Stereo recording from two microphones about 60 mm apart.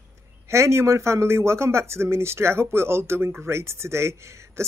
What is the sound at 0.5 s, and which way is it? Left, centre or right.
Speech, right.